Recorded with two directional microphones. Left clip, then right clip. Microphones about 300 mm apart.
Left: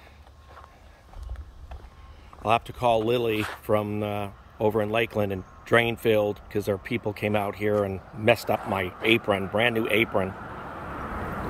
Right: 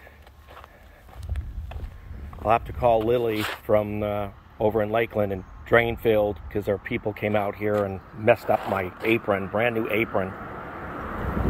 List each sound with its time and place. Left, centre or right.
2.4 s speech: centre
3.3 s speech: right
3.6 s speech: centre